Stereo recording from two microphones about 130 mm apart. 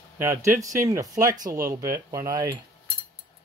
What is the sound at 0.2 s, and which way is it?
Speech, 20° right (ahead or behind).